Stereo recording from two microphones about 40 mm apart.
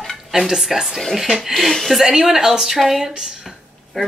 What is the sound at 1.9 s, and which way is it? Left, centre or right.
Speech, centre.